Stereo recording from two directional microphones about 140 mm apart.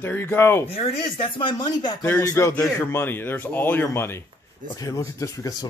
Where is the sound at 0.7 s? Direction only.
40° left (ahead or behind).